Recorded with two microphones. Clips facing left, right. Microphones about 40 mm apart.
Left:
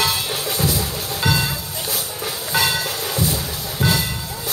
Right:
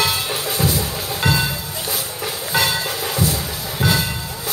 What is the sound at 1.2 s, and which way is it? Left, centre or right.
Music, right.